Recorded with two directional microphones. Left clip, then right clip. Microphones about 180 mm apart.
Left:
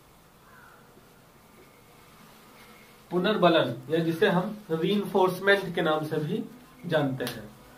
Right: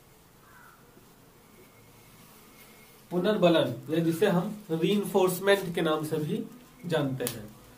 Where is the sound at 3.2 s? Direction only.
35° right (ahead or behind).